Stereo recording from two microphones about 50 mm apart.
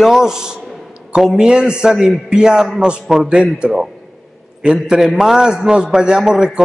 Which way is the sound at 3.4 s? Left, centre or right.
Right.